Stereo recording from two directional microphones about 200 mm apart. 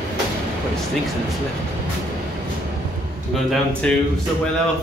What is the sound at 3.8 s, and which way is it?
Speech, 5° left (ahead or behind).